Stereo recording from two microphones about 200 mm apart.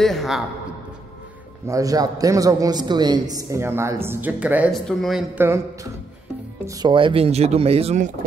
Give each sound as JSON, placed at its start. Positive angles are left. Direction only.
{"t": 0.0, "sound": "a man's voice", "side_deg": 0}
{"t": 1.7, "sound": "a man's voice", "side_deg": -15}
{"t": 6.6, "sound": "speech", "side_deg": -20}